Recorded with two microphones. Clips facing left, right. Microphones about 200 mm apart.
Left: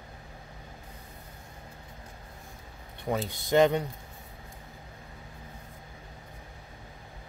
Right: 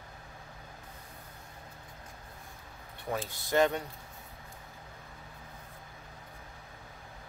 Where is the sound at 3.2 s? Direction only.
20° left (ahead or behind).